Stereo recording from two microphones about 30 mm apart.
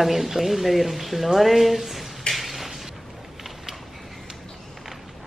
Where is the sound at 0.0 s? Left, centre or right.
Centre.